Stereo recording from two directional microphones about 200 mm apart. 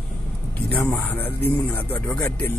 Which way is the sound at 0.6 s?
10° left (ahead or behind).